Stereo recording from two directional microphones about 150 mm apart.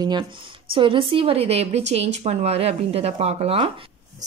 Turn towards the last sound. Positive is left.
turn(degrees=-40)  # may be behind; listen again after turning